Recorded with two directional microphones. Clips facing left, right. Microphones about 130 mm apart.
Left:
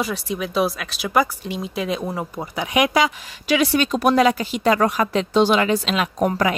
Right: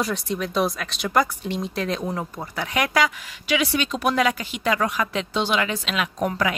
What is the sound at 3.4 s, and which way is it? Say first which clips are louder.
A woman's voice: left 5 dB; 40° left (ahead or behind).